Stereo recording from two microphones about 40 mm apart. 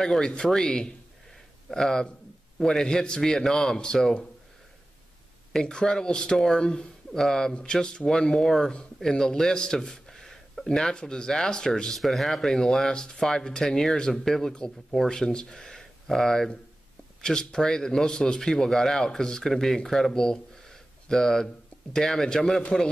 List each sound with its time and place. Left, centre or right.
0.0 s speech: centre
5.5 s speech: centre
10.8 s speech: centre
11.9 s speech: centre
12.5 s speech: centre